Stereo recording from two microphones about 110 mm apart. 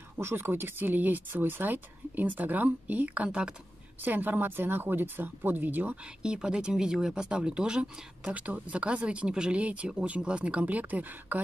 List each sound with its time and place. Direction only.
0.2 s a woman's voice: 20° right (ahead or behind)